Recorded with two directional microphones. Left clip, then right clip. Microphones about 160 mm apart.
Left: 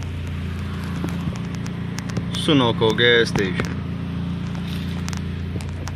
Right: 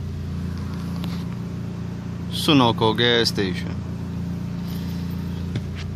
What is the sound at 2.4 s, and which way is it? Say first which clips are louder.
Speech: even; 35° right (ahead or behind).